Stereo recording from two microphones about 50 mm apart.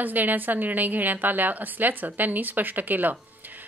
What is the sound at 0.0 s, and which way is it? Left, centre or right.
A woman's voice, right.